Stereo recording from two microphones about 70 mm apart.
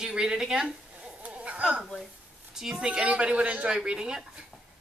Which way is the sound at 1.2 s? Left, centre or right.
Centre.